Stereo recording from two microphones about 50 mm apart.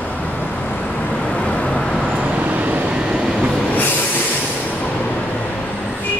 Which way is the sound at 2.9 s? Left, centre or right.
Centre.